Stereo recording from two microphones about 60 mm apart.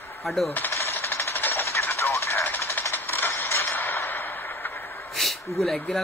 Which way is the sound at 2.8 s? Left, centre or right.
Left.